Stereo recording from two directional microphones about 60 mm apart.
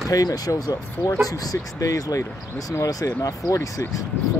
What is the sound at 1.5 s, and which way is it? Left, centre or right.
Speech, left.